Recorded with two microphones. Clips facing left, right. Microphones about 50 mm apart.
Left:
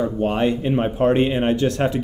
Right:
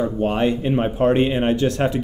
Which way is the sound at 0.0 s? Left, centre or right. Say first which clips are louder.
Even; centre.